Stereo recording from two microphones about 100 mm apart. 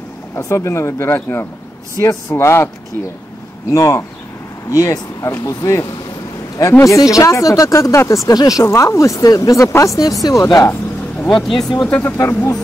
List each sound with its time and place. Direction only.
0.4 s speech: 30° left (ahead or behind)
3.7 s speech: 30° left (ahead or behind)
11.4 s speech: centre (ahead or behind)
11.9 s speech: 20° left (ahead or behind)